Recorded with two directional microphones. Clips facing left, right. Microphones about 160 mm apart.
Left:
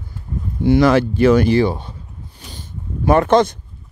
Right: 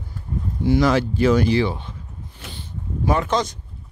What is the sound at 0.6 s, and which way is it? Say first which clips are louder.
Speech: left 5 dB; 65° left (ahead or behind).